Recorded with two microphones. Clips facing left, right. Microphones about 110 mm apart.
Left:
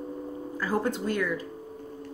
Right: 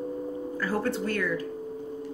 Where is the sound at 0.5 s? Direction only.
15° left (ahead or behind).